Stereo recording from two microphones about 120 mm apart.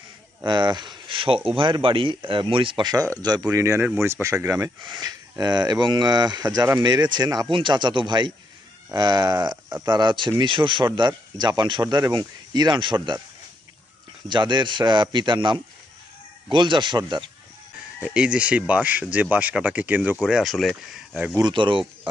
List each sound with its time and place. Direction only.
0.5 s speech: 40° right (ahead or behind)
3.5 s speech: 25° right (ahead or behind)
4.8 s speech: 40° right (ahead or behind)
14.3 s speech: 40° right (ahead or behind)
18.0 s speech: 10° right (ahead or behind)
20.2 s speech: centre (ahead or behind)
21.4 s speech: 40° right (ahead or behind)